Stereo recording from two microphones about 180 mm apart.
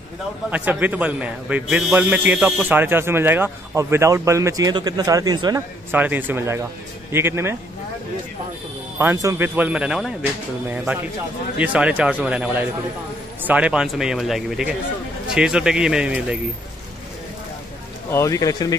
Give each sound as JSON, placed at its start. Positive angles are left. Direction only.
{"t": 0.5, "sound": "a man's voice", "side_deg": -10}
{"t": 5.9, "sound": "a man's voice", "side_deg": -10}
{"t": 8.9, "sound": "a man's voice", "side_deg": -15}
{"t": 11.5, "sound": "a man's voice", "side_deg": -10}
{"t": 18.1, "sound": "speech", "side_deg": 20}